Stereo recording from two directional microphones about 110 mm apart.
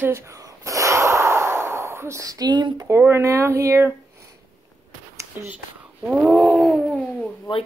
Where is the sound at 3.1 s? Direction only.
25° right (ahead or behind).